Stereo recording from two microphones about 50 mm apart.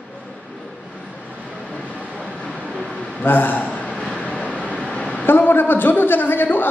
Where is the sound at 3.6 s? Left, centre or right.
Left.